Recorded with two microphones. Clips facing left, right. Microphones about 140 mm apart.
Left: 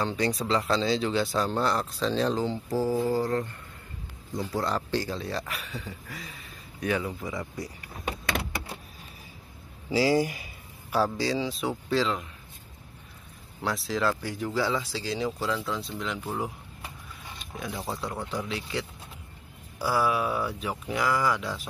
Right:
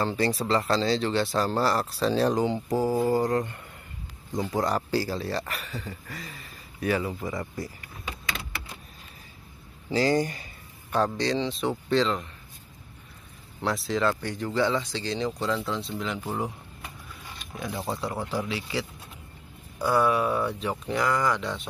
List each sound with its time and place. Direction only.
0.0 s speech: centre (ahead or behind)
8.0 s vehicle: 60° left (ahead or behind)
9.8 s a sound: 10° left (ahead or behind)
11.1 s speech: 5° left (ahead or behind)
13.6 s speech: centre (ahead or behind)
17.6 s speech: centre (ahead or behind)